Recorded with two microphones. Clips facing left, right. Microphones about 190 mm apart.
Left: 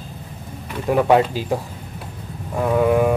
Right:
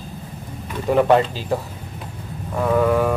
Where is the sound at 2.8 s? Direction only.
15° left (ahead or behind).